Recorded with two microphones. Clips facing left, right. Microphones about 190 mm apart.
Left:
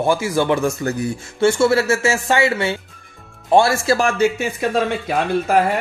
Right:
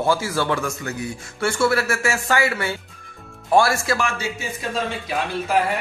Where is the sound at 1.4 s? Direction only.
25° left (ahead or behind).